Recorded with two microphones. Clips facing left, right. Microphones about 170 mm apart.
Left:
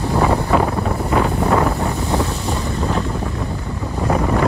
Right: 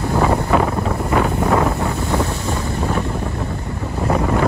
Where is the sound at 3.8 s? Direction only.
Centre (ahead or behind).